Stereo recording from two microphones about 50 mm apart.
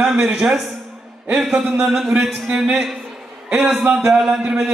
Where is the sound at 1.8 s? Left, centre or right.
Centre.